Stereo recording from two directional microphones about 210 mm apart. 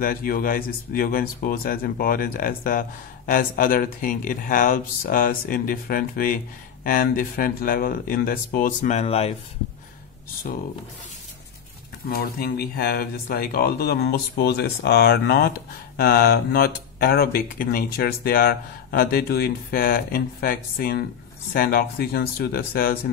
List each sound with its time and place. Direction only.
0.0 s speech: 40° left (ahead or behind)
12.1 s speech: 45° left (ahead or behind)